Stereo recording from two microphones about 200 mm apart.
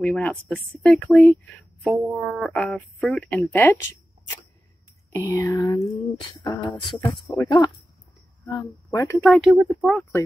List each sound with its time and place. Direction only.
0.0 s speech: 5° left (ahead or behind)
5.1 s speech: 15° left (ahead or behind)
5.8 s a sound: 25° left (ahead or behind)
8.5 s speech: 15° left (ahead or behind)
9.2 s speech: centre (ahead or behind)